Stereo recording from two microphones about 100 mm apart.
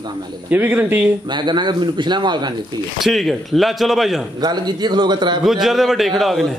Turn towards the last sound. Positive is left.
turn(degrees=0)  # may be behind; listen again after turning